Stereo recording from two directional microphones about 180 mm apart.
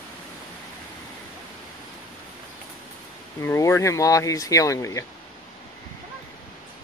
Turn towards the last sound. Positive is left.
turn(degrees=15)  # may be behind; listen again after turning